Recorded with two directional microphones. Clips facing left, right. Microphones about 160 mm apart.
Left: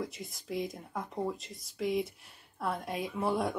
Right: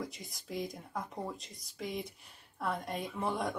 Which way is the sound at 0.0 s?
Centre (ahead or behind).